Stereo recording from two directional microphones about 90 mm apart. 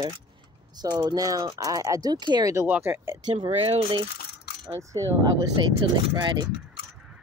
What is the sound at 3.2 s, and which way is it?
Speech, 80° right.